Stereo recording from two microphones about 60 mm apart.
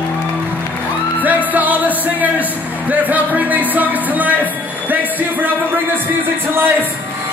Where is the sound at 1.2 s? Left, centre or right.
Right.